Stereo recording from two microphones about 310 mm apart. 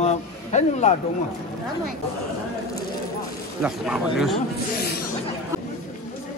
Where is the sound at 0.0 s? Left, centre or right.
Left.